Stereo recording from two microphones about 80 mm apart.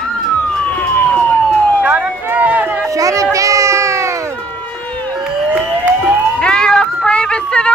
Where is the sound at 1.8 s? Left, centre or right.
Right.